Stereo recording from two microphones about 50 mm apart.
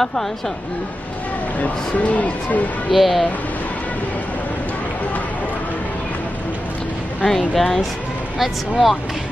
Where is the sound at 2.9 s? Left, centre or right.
Centre.